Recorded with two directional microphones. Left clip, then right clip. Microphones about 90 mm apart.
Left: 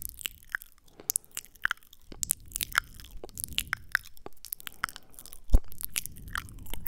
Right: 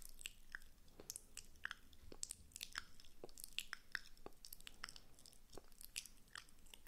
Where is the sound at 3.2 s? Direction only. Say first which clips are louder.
Left 15 dB; 35° left (ahead or behind).